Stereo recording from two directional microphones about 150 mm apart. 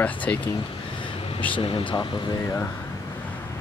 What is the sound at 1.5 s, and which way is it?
Speech, 35° left (ahead or behind).